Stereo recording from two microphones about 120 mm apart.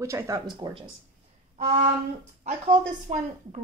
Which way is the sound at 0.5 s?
40° right (ahead or behind).